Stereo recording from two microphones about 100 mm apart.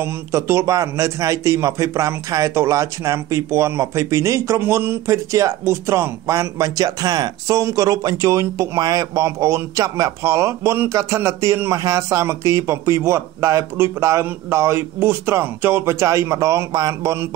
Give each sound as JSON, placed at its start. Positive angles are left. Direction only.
{"t": 0.0, "sound": "a man's voice", "side_deg": -30}